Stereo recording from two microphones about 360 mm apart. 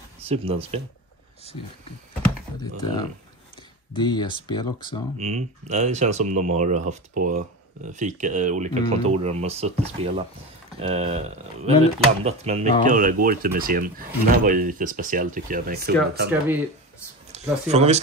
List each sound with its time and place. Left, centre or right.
0.2 s speech: centre
3.9 s speech: centre
5.1 s speech: centre
16.3 s speech: centre
17.3 s speech: centre